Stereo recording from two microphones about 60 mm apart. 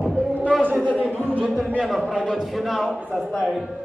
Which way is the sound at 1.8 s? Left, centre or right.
Centre.